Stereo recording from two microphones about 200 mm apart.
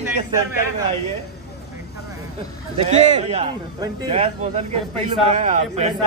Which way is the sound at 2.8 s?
35° right (ahead or behind).